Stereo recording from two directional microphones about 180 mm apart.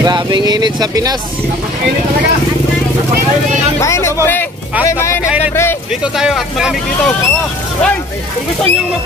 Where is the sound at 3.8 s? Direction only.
15° left (ahead or behind).